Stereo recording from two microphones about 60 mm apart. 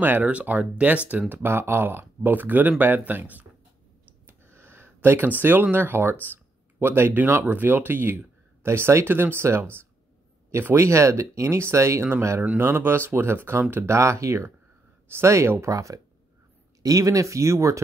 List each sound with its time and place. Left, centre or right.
0.0 s speech: right
1.3 s speech: right
4.3 s a sound: right
6.3 s speech: right
10.7 s speech: right
12.5 s speech: right
15.6 s speech: right